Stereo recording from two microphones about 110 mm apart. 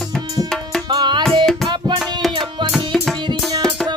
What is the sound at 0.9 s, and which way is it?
Tabla, 45° right (ahead or behind).